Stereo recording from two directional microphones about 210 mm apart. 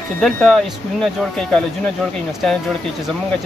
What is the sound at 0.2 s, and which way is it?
Speech, 5° left (ahead or behind).